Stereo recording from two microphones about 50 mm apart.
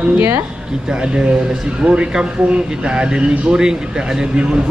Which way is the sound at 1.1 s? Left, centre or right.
Centre.